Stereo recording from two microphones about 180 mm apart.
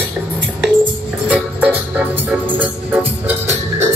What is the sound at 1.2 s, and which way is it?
Music, 5° right (ahead or behind).